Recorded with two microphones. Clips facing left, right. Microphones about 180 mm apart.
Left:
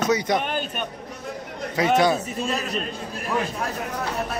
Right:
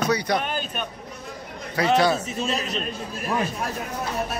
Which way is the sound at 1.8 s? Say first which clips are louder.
Left 1 dB; 20° left (ahead or behind).